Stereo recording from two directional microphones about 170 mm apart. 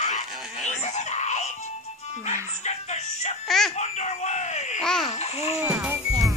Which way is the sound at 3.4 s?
Centre (ahead or behind).